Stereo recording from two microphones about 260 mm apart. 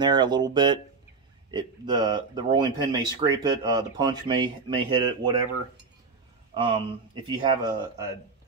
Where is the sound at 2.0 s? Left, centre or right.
Centre.